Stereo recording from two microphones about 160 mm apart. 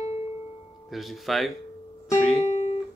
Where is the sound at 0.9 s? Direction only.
Centre (ahead or behind).